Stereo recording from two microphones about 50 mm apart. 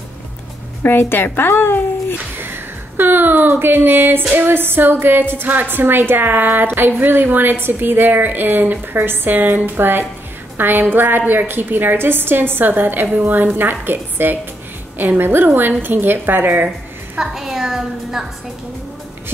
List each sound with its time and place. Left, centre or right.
0.8 s speech: left
2.3 s a sound: right
4.4 s a woman's voice: right
17.2 s a woman's voice: centre